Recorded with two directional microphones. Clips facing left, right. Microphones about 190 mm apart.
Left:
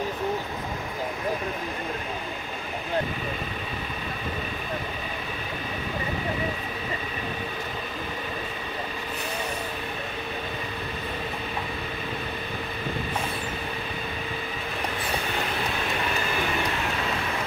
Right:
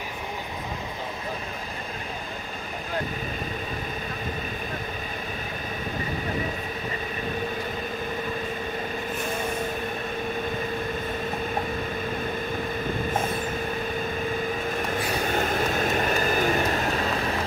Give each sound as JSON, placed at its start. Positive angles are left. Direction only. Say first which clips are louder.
{"t": 14.9, "sound": "vehicle", "louder": "right 2 dB", "side_deg": -45}